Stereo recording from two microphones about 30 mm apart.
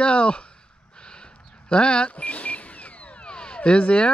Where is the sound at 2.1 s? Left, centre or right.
Left.